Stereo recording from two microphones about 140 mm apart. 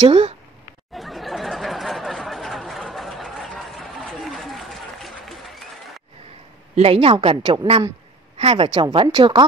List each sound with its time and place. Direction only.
0.0 s speech: 35° right (ahead or behind)
0.9 s a sound: centre (ahead or behind)
6.7 s a woman's voice: 45° right (ahead or behind)